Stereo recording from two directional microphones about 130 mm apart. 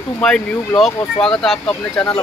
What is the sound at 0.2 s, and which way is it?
Speech, 5° left (ahead or behind).